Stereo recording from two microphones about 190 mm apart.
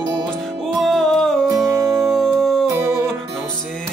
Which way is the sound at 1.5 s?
15° right (ahead or behind).